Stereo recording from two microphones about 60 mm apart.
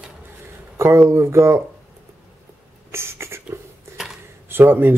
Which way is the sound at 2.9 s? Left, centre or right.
Right.